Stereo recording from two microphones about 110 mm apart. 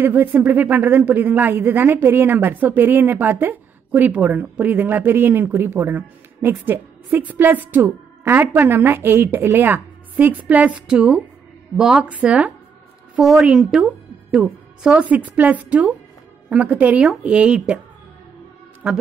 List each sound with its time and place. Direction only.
0.0 s a woman's voice: 15° right (ahead or behind)
18.8 s speech: 10° right (ahead or behind)